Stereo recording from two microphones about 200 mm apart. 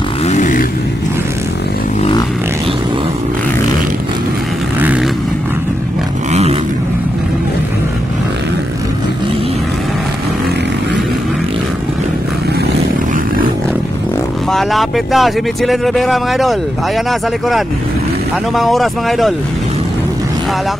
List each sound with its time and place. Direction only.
0.3 s vehicle: 40° left (ahead or behind)
4.7 s vehicle: 10° right (ahead or behind)
6.3 s vehicle: 30° right (ahead or behind)
14.5 s speech: centre (ahead or behind)
18.5 s speech: centre (ahead or behind)